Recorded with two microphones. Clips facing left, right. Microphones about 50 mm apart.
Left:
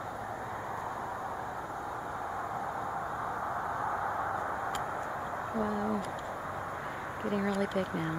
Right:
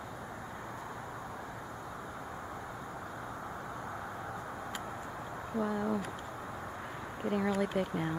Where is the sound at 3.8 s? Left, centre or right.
Left.